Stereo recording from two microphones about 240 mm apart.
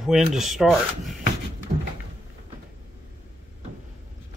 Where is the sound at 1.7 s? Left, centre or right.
Right.